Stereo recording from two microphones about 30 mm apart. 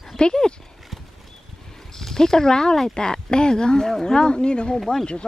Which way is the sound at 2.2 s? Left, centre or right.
Centre.